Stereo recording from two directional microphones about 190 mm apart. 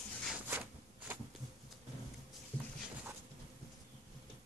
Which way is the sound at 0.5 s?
10° right (ahead or behind).